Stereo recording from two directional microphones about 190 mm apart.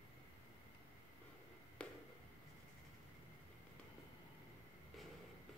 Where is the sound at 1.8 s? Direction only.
5° left (ahead or behind).